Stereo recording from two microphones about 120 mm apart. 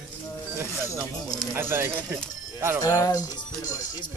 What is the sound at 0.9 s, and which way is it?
Speech, 5° left (ahead or behind).